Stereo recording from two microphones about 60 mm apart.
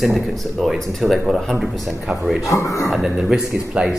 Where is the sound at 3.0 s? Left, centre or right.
Centre.